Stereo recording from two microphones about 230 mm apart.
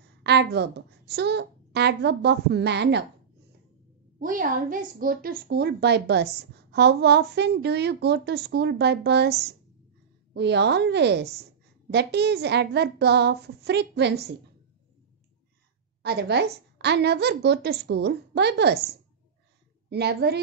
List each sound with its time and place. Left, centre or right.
0.2 s a woman's voice: right
4.2 s a woman's voice: right
16.0 s a woman's voice: right
19.9 s a woman's voice: right